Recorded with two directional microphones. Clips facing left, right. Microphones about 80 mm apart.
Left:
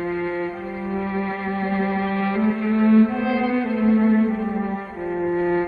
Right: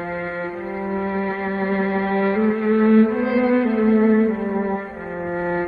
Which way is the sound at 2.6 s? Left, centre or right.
Right.